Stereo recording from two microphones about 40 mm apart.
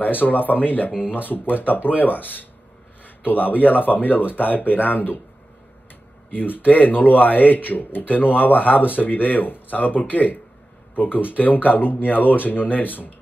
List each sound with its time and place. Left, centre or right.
0.0 s speech: left
6.3 s speech: left